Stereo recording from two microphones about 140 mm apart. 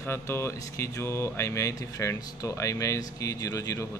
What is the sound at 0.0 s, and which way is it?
Speech, 20° left (ahead or behind).